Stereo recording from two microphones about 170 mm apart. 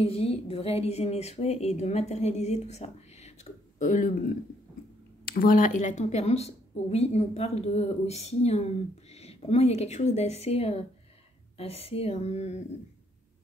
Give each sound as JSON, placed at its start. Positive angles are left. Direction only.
{"t": 0.0, "sound": "speech", "side_deg": 35}
{"t": 3.8, "sound": "speech", "side_deg": 50}
{"t": 5.3, "sound": "speech", "side_deg": 55}